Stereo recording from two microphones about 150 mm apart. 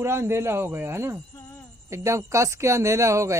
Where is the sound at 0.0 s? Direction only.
15° right (ahead or behind).